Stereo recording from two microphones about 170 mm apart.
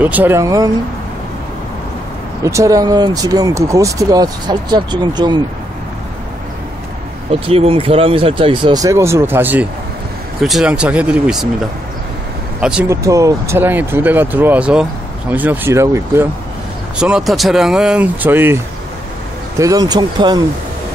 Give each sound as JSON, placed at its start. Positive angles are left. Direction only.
{"t": 0.0, "sound": "speech", "side_deg": -10}
{"t": 2.4, "sound": "speech", "side_deg": -20}
{"t": 7.2, "sound": "speech", "side_deg": -35}
{"t": 12.8, "sound": "speech", "side_deg": -20}
{"t": 17.0, "sound": "speech", "side_deg": 0}
{"t": 19.6, "sound": "speech", "side_deg": -20}